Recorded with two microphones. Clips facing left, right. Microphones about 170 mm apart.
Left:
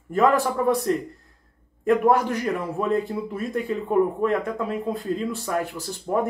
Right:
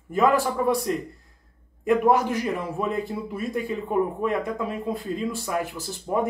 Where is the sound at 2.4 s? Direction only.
5° right (ahead or behind).